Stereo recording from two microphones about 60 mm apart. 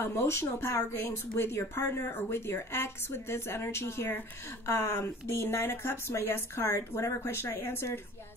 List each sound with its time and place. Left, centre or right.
0.0 s speech: left